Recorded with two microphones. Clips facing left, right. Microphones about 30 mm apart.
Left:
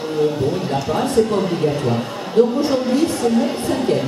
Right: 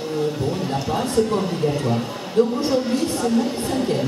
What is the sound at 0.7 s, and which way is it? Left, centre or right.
A man's voice, centre.